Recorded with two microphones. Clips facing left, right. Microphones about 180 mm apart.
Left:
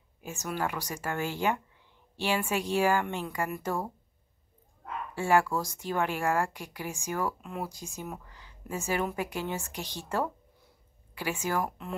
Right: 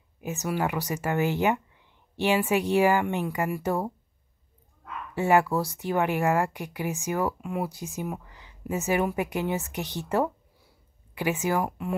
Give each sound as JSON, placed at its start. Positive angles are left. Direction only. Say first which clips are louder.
{"t": 0.2, "sound": "speech", "louder": "right 5 dB", "side_deg": -20}
{"t": 5.1, "sound": "speech", "louder": "right 4 dB", "side_deg": -15}